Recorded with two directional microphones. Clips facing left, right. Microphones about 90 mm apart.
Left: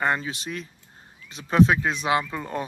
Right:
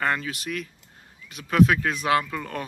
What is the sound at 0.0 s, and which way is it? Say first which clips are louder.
Speech: left 1 dB; 20° left (ahead or behind).